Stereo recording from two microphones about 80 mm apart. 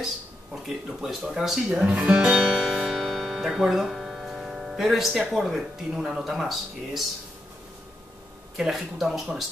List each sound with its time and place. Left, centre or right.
1.0 s speech: centre
8.5 s speech: centre